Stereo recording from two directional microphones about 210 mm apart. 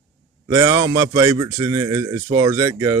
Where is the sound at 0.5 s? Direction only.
15° right (ahead or behind).